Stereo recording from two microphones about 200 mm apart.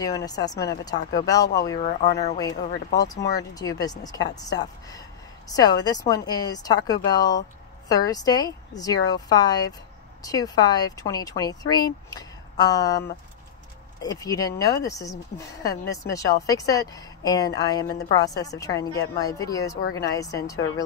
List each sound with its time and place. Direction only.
0.0 s speech: 20° left (ahead or behind)
1.8 s speech: 30° left (ahead or behind)
3.1 s speech: 20° left (ahead or behind)
14.0 s speech: 15° left (ahead or behind)